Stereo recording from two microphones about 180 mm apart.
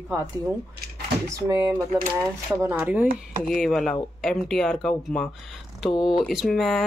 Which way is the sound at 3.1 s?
45° right (ahead or behind).